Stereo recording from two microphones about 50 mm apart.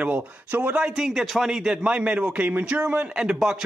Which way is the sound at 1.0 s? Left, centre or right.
Centre.